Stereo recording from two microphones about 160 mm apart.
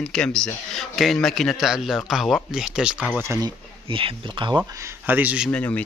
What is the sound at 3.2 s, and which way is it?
Speech, 20° right (ahead or behind).